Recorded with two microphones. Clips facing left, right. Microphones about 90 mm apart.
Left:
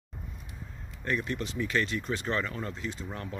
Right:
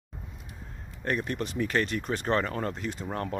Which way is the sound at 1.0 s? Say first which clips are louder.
Right 2 dB; 45° right (ahead or behind).